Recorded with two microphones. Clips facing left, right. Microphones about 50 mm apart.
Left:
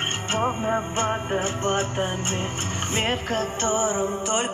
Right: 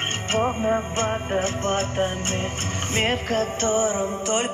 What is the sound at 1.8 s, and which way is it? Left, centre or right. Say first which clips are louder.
Music: right 1 dB; right.